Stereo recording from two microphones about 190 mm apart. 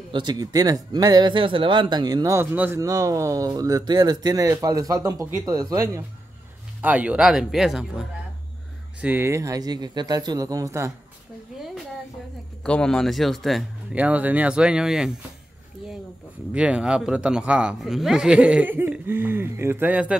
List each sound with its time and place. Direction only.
0.1 s a man's voice: 25° right (ahead or behind)
12.6 s a man's voice: 5° left (ahead or behind)
16.5 s a man's voice: 5° right (ahead or behind)